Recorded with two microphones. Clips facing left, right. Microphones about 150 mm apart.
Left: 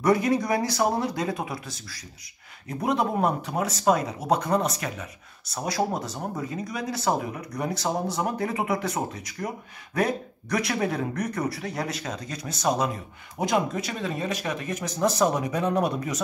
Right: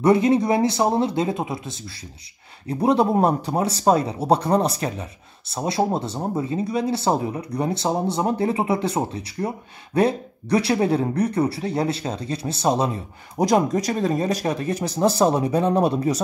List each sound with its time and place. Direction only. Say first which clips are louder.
0.0 s speech: right 5 dB; 25° right (ahead or behind)